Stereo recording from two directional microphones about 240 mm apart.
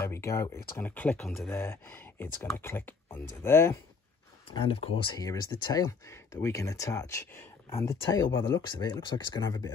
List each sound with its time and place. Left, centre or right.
0.0 s speech: centre
4.6 s speech: left